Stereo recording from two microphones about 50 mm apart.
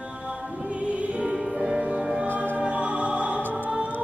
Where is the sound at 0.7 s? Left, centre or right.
Right.